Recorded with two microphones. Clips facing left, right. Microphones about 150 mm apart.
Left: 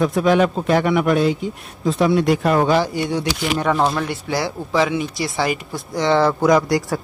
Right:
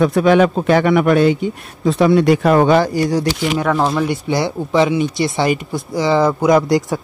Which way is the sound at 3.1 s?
40° right (ahead or behind).